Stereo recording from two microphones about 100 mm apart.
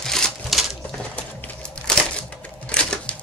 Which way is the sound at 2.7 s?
10° left (ahead or behind).